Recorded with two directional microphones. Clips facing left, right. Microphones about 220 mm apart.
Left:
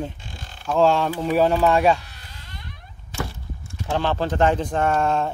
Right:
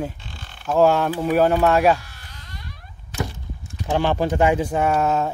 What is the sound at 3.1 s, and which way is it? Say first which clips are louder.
Speech: right 2 dB; 20° right (ahead or behind).